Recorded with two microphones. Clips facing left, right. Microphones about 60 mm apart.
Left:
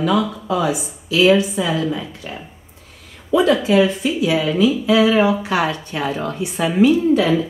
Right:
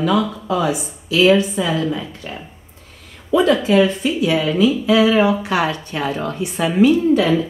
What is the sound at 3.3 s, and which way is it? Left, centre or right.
Speech, right.